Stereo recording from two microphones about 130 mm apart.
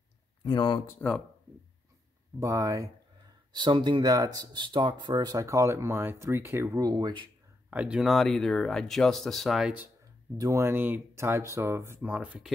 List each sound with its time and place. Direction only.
0.4 s speech: 35° left (ahead or behind)
0.8 s speech: 10° left (ahead or behind)
2.4 s speech: 25° right (ahead or behind)
3.5 s speech: 35° right (ahead or behind)
7.7 s speech: 10° right (ahead or behind)
10.3 s speech: 25° right (ahead or behind); by 12.5 s 10° right (ahead or behind)